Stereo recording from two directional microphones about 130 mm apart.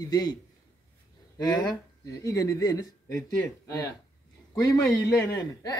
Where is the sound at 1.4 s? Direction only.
30° left (ahead or behind).